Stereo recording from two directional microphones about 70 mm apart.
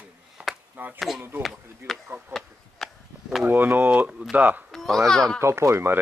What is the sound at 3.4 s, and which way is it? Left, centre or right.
Speech, right.